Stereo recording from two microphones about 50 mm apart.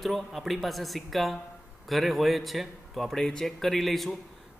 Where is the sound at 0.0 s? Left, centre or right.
Centre.